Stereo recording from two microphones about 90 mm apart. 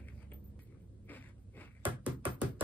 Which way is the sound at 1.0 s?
20° left (ahead or behind).